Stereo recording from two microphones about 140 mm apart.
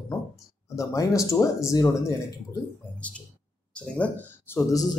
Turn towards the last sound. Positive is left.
turn(degrees=20)  # may be behind; listen again after turning